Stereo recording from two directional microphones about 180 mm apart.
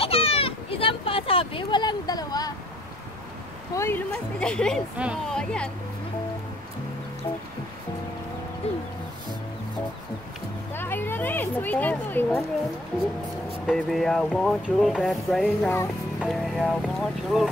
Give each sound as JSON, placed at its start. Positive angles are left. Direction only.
{"t": 0.0, "sound": "children playing", "side_deg": 35}
{"t": 3.7, "sound": "speech", "side_deg": 15}
{"t": 4.1, "sound": "speech", "side_deg": 5}
{"t": 10.8, "sound": "a sound", "side_deg": 10}
{"t": 13.7, "sound": "speech", "side_deg": 0}